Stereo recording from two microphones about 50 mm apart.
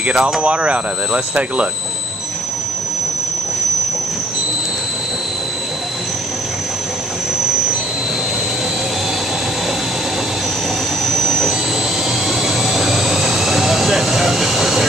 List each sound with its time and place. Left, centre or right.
0.0 s speech: centre
11.1 s jet engine: centre
12.3 s vehicle: centre